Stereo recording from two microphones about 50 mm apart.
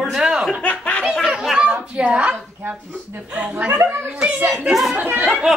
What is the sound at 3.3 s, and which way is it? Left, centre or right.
Speech, right.